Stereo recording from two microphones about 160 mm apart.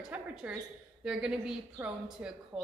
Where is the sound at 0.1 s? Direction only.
10° right (ahead or behind).